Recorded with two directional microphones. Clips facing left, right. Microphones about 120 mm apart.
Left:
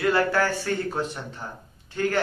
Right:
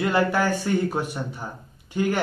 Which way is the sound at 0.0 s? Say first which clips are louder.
Even; 15° right (ahead or behind).